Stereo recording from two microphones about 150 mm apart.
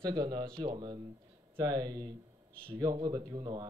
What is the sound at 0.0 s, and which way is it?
Speech, 25° right (ahead or behind).